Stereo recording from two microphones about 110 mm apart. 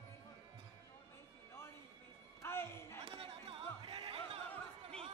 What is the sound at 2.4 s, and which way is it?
Music, 20° left (ahead or behind).